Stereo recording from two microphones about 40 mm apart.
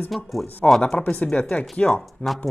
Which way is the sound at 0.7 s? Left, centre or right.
Centre.